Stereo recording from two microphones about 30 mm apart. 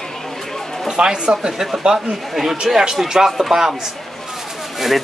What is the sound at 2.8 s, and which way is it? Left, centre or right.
Speech, centre.